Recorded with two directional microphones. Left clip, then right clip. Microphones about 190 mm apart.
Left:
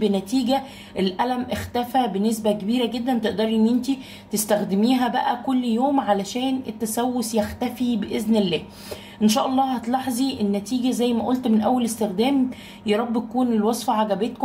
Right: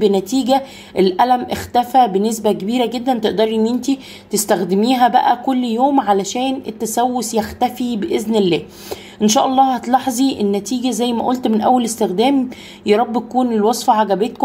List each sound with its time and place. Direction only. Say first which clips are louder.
0.0 s a woman's voice: right 7 dB; 45° right (ahead or behind)